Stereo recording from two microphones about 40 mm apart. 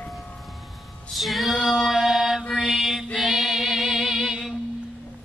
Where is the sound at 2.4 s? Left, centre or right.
Centre.